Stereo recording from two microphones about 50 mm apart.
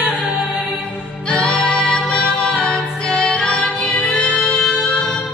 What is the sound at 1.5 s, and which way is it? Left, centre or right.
Music, centre.